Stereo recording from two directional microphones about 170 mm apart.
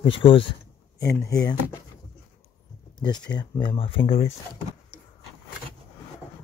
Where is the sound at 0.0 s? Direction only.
30° left (ahead or behind).